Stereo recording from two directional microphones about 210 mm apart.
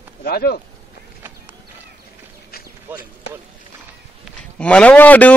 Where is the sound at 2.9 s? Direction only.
10° right (ahead or behind).